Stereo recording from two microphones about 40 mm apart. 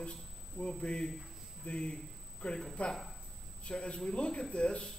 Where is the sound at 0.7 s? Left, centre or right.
Left.